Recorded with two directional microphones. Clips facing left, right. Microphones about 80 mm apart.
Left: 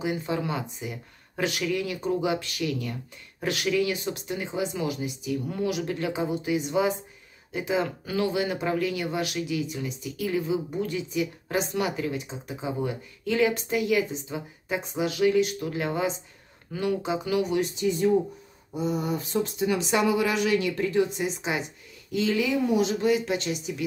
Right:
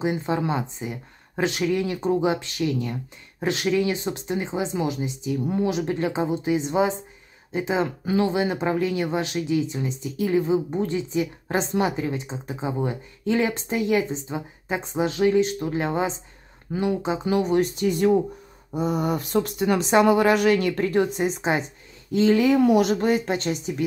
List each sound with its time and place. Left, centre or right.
0.0 s speech: right
19.8 s speech: right
20.1 s speech: right
22.6 s speech: right